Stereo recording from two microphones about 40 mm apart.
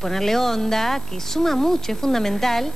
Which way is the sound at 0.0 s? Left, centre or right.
Centre.